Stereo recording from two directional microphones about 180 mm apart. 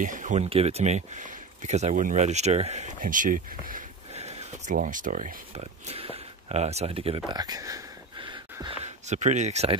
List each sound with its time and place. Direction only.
0.0 s speech: 45° right (ahead or behind); by 8.7 s 25° right (ahead or behind)
8.8 s speech: 40° right (ahead or behind)